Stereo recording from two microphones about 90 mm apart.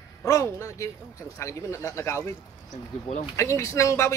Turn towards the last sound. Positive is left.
turn(degrees=35)  # may be behind; listen again after turning